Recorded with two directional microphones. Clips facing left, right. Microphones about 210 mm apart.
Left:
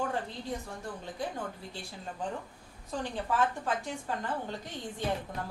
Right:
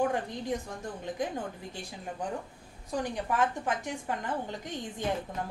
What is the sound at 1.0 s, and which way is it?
Speech, 15° right (ahead or behind).